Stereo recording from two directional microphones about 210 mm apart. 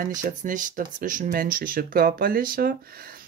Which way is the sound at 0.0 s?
40° right (ahead or behind).